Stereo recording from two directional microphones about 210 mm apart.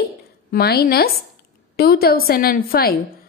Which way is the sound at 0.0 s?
50° left (ahead or behind).